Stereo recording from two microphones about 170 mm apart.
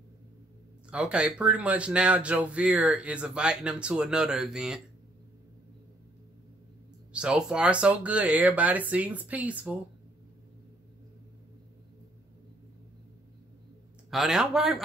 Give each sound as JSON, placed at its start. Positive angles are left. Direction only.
{"t": 0.8, "sound": "speech", "side_deg": -5}
{"t": 7.1, "sound": "speech", "side_deg": -5}
{"t": 14.1, "sound": "a man's voice", "side_deg": -5}